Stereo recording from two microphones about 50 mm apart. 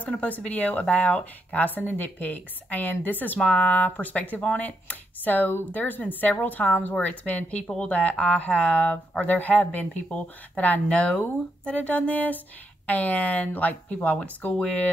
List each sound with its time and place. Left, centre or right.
0.0 s speech: left
3.4 s speech: left